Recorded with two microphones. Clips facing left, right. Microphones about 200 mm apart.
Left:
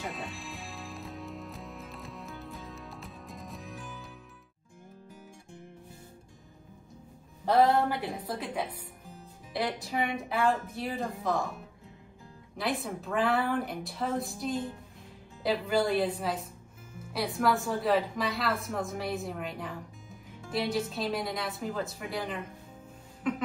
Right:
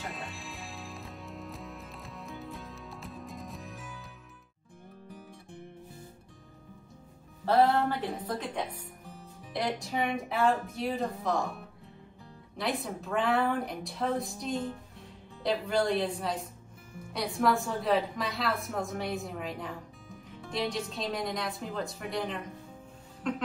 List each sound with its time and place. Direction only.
0.0 s music: centre (ahead or behind)
7.4 s a woman's voice: 15° left (ahead or behind)
12.5 s speech: centre (ahead or behind)